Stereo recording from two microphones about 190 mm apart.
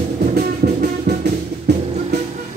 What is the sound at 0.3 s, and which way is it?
Music, 55° right (ahead or behind).